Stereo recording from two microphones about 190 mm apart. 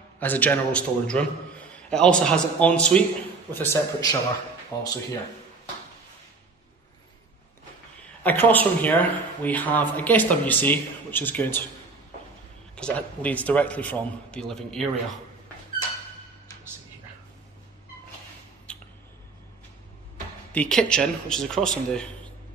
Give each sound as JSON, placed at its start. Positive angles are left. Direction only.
{"t": 0.2, "sound": "a man's voice", "side_deg": 10}
{"t": 8.2, "sound": "speech", "side_deg": 10}
{"t": 12.7, "sound": "speech", "side_deg": 5}
{"t": 18.7, "sound": "a sound", "side_deg": 5}
{"t": 20.5, "sound": "a man's voice", "side_deg": 5}